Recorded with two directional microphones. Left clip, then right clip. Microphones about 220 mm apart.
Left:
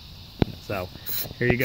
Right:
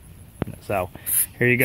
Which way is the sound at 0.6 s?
15° right (ahead or behind).